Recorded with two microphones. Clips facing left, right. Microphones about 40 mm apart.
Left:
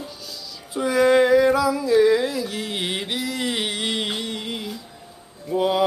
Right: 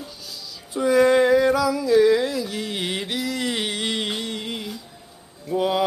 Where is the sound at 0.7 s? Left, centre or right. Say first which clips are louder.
Even; centre.